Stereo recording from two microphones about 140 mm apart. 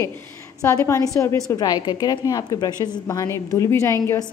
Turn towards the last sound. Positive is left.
turn(degrees=20)  # may be behind; listen again after turning